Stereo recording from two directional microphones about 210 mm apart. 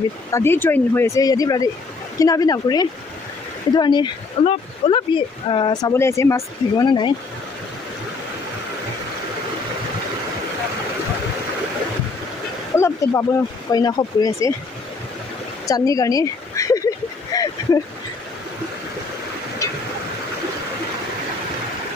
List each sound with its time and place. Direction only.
0.3 s speech: 10° left (ahead or behind)
12.7 s speech: 10° left (ahead or behind)
15.6 s speech: 15° left (ahead or behind)
17.3 s a sound: 20° left (ahead or behind)